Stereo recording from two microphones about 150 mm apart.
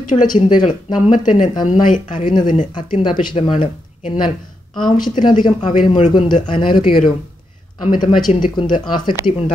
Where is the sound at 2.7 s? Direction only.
30° left (ahead or behind).